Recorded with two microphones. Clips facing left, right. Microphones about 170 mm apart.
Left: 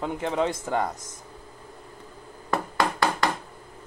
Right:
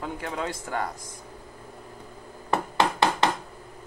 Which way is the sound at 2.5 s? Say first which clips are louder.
Right 1 dB; 20° right (ahead or behind).